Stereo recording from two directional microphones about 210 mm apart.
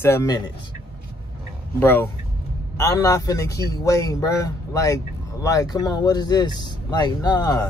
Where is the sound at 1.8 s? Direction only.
10° left (ahead or behind).